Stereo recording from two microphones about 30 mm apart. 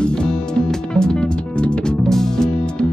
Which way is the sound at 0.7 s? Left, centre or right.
Left.